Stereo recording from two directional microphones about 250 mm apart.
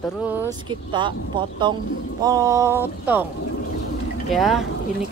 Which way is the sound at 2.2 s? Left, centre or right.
Centre.